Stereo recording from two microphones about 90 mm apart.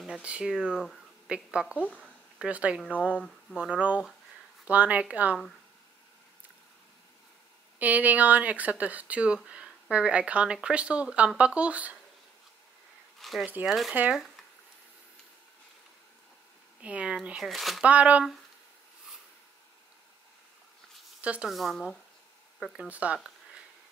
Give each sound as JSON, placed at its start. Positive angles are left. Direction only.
{"t": 0.0, "sound": "a woman's voice", "side_deg": -10}
{"t": 7.8, "sound": "speech", "side_deg": -15}
{"t": 13.2, "sound": "speech", "side_deg": 0}
{"t": 16.8, "sound": "speech", "side_deg": -15}
{"t": 17.4, "sound": "speech", "side_deg": 0}
{"t": 17.8, "sound": "speech", "side_deg": -15}
{"t": 21.2, "sound": "speech", "side_deg": -15}
{"t": 21.5, "sound": "speech", "side_deg": 0}